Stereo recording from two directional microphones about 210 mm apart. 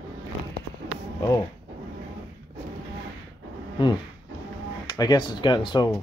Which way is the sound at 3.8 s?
20° left (ahead or behind).